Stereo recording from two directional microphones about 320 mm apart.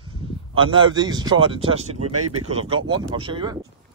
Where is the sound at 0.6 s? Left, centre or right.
Centre.